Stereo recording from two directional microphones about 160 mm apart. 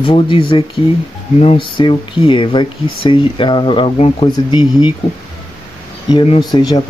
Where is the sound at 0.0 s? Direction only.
30° left (ahead or behind).